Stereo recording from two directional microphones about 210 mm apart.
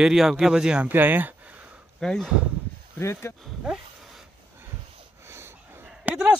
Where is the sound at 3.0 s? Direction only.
10° left (ahead or behind).